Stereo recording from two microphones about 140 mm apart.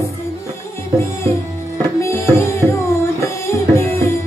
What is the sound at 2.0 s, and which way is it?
Music, 20° left (ahead or behind).